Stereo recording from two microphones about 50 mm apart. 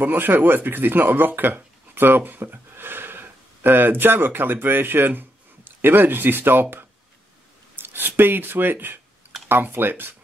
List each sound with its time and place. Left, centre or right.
0.0 s speech: right